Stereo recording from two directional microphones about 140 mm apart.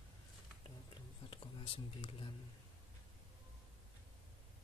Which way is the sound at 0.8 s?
40° left (ahead or behind).